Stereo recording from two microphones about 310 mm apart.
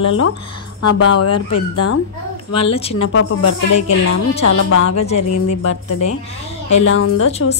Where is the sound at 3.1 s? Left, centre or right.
Left.